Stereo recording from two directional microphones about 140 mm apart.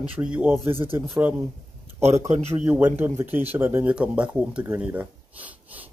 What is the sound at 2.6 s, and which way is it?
Speech, 15° right (ahead or behind).